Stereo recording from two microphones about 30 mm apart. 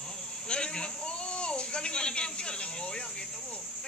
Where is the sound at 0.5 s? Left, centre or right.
Left.